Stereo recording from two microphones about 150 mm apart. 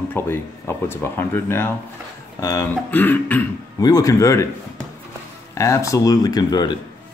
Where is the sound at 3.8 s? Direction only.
25° left (ahead or behind).